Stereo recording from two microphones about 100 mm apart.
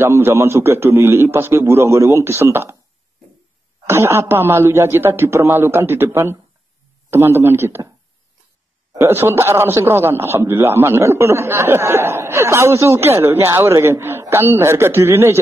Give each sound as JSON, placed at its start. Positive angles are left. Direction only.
{"t": 0.0, "sound": "a man's voice", "side_deg": -25}
{"t": 3.8, "sound": "a man's voice", "side_deg": -25}
{"t": 8.9, "sound": "a man's voice", "side_deg": -25}